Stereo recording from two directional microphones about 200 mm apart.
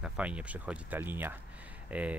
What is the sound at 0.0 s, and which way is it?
Speech, 5° right (ahead or behind).